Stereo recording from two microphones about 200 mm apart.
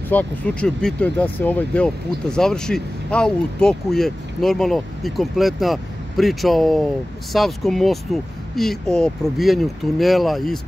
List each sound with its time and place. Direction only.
0.1 s speech: 5° left (ahead or behind)